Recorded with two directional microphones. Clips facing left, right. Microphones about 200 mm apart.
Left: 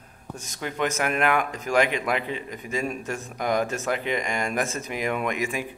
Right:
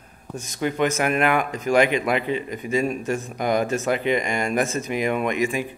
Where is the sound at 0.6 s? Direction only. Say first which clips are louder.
Right 5 dB; 5° right (ahead or behind).